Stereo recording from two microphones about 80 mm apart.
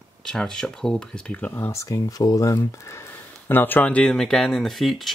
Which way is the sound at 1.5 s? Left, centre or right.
Left.